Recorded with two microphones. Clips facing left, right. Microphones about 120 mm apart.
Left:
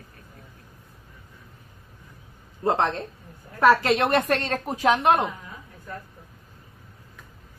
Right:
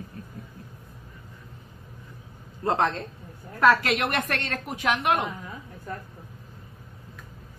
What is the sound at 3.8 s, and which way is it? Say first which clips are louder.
A woman's voice: left 5 dB; 35° left (ahead or behind).